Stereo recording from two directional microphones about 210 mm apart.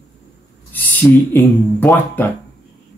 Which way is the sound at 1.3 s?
10° left (ahead or behind).